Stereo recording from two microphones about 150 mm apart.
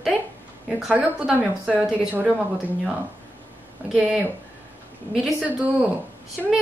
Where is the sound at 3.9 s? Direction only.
5° right (ahead or behind).